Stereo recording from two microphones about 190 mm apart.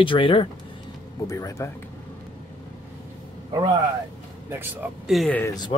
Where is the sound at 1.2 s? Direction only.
15° left (ahead or behind).